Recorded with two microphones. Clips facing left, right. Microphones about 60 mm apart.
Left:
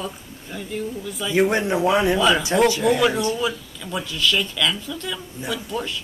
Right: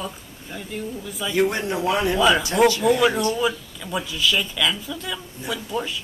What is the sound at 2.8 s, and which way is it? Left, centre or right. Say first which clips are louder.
Speech: even; centre.